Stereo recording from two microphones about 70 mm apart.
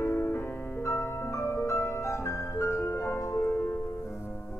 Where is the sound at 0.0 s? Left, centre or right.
Left.